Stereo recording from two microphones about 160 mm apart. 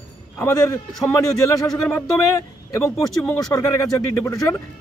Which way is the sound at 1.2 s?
20° left (ahead or behind).